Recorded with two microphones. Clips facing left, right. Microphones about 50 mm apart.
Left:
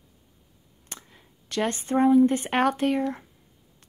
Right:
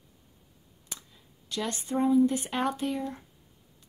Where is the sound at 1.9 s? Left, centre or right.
Left.